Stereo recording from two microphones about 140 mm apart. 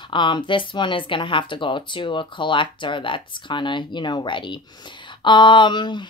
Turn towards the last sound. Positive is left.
turn(degrees=35)  # may be behind; listen again after turning